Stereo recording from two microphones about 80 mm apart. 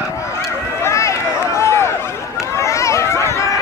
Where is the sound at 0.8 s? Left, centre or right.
Left.